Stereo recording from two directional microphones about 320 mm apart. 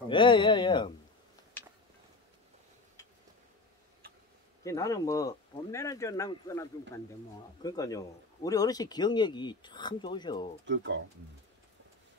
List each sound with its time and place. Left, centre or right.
0.1 s speech: centre
4.6 s speech: centre
10.6 s speech: right